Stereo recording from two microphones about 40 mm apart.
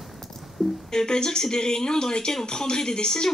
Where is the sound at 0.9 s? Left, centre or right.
Centre.